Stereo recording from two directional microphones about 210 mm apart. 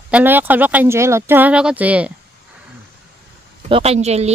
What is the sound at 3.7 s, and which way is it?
Speech, 30° right (ahead or behind).